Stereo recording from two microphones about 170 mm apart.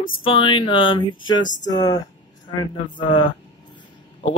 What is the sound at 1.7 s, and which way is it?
Speech, 20° left (ahead or behind).